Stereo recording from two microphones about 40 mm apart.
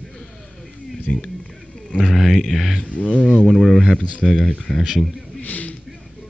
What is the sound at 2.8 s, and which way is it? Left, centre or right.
Speech, left.